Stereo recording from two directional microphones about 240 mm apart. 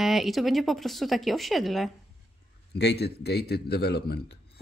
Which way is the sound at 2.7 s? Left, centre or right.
Left.